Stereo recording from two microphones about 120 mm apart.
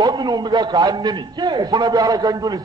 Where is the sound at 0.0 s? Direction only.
35° right (ahead or behind).